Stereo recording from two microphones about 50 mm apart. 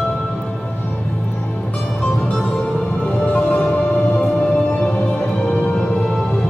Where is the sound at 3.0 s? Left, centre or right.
Left.